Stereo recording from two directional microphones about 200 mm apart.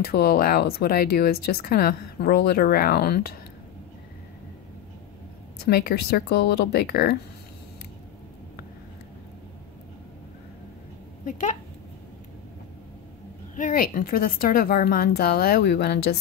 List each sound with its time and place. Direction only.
0.0 s speech: 50° left (ahead or behind)
5.7 s speech: 50° left (ahead or behind)
11.2 s speech: 40° left (ahead or behind)
13.6 s speech: 45° left (ahead or behind)